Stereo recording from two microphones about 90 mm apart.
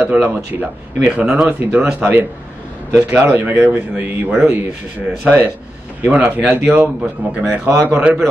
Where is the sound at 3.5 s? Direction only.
20° right (ahead or behind).